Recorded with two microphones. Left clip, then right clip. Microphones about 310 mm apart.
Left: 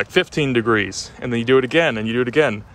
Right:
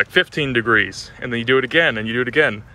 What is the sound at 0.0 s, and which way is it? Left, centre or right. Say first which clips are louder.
Speech: right 1 dB; centre.